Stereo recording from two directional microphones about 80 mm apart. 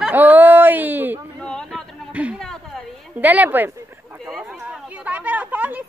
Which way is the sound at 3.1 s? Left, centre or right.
Right.